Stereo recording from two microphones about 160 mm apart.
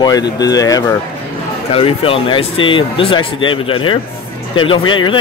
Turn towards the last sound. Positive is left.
turn(degrees=30)  # may be behind; listen again after turning